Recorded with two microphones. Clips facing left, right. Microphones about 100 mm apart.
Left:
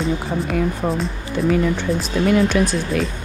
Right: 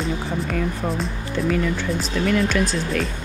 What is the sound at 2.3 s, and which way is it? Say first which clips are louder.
Speech: left 4 dB; 20° left (ahead or behind).